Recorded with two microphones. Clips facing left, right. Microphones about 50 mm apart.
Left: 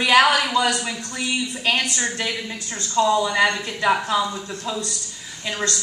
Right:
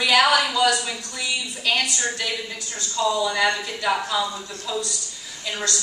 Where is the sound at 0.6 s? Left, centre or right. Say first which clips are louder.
Even; left.